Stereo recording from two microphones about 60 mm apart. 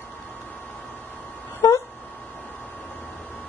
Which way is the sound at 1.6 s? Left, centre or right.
Left.